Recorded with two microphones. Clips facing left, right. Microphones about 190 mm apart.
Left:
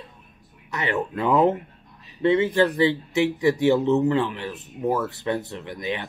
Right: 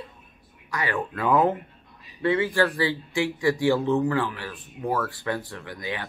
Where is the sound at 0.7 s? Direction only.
25° left (ahead or behind).